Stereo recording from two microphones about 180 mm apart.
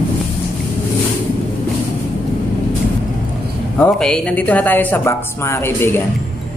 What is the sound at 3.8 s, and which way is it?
A woman's voice, 5° left (ahead or behind).